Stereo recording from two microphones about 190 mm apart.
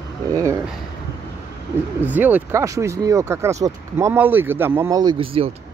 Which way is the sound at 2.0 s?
10° right (ahead or behind).